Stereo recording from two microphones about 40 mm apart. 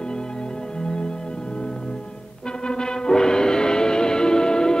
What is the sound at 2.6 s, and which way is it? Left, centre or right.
Music, centre.